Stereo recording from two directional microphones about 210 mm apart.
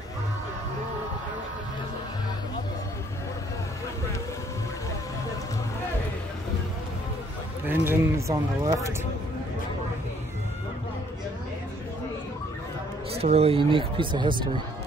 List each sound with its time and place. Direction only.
7.6 s speech: 10° right (ahead or behind)
13.2 s speech: 30° right (ahead or behind)